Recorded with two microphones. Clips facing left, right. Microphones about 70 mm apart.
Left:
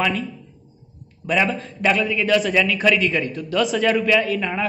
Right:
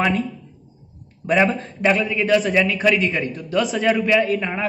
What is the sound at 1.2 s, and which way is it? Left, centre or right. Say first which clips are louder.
A man's voice: right 3 dB; right.